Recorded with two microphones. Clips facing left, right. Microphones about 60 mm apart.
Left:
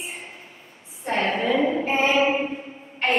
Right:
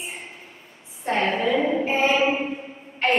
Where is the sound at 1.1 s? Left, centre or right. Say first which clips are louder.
Right 1 dB; centre.